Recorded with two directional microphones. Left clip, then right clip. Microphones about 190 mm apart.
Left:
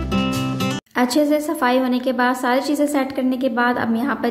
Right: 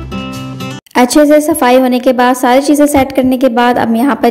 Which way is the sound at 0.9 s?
35° right (ahead or behind).